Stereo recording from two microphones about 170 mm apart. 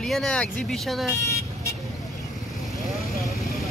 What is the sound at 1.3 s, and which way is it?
Vehicle, 15° left (ahead or behind).